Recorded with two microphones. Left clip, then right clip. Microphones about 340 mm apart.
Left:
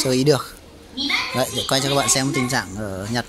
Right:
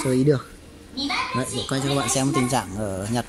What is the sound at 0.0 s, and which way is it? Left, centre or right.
Speech, centre.